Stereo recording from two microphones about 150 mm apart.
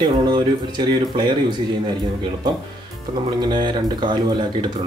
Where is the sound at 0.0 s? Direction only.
30° right (ahead or behind).